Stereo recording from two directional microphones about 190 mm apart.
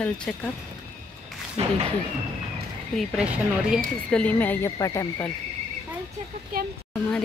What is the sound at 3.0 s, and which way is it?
Speech, 5° right (ahead or behind).